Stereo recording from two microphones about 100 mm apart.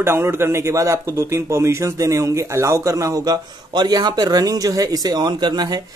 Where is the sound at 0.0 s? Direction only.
25° right (ahead or behind).